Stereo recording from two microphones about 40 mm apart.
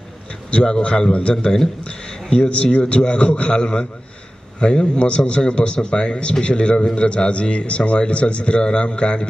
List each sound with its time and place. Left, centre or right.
0.5 s a man's voice: left